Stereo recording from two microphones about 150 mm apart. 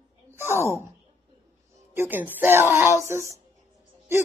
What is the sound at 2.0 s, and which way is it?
Speech, 15° right (ahead or behind).